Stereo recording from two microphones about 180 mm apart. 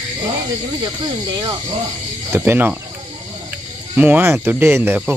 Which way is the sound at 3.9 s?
10° right (ahead or behind).